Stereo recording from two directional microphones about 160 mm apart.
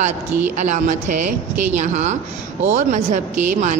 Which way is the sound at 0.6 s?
50° right (ahead or behind).